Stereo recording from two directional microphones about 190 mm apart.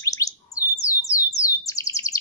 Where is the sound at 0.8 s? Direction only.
5° right (ahead or behind).